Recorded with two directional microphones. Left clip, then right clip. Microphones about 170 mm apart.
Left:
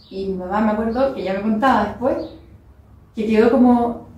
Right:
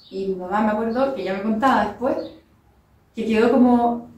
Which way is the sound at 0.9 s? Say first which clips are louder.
Left 2 dB; 25° right (ahead or behind).